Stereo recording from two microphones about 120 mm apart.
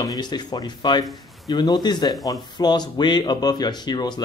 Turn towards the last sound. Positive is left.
turn(degrees=35)  # may be behind; listen again after turning